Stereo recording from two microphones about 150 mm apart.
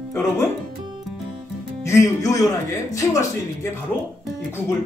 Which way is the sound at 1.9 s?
20° left (ahead or behind).